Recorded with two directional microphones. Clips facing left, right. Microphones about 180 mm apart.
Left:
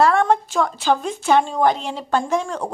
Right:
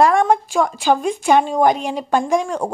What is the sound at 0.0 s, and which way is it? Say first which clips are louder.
Speech: right 2 dB; 15° right (ahead or behind).